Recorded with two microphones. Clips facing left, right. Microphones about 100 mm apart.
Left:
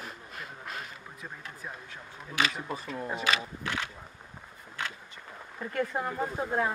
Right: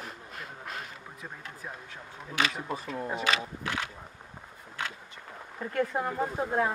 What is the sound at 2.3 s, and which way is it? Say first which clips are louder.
Speech: even; centre (ahead or behind).